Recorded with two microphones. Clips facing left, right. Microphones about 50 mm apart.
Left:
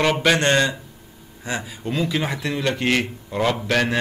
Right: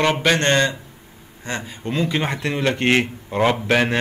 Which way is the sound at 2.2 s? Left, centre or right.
Centre.